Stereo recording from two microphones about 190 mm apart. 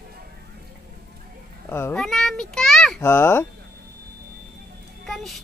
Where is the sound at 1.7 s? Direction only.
15° left (ahead or behind).